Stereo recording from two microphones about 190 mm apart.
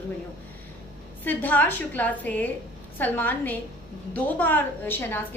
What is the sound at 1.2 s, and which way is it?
A woman's voice, 10° left (ahead or behind).